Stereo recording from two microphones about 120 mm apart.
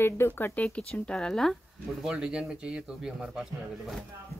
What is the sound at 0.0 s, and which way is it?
Speech, 20° left (ahead or behind).